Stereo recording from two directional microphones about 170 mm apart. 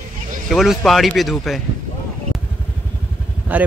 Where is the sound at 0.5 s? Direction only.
Centre (ahead or behind).